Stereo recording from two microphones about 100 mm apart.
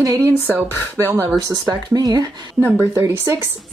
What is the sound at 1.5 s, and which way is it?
Speech, 40° right (ahead or behind).